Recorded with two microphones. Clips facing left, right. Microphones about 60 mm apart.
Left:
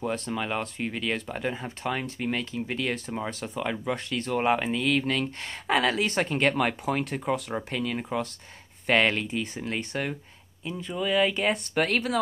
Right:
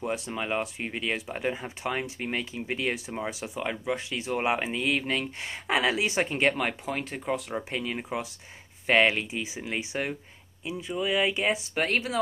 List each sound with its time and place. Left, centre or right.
0.3 s speech: centre
7.7 s speech: centre